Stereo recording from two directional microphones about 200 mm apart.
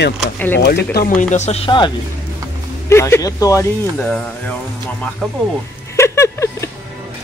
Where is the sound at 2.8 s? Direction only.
15° left (ahead or behind).